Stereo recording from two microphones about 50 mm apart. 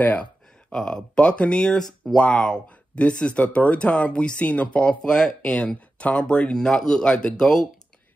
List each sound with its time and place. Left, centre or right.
0.0 s speech: left
0.7 s speech: centre
1.8 s speech: centre
6.6 s speech: centre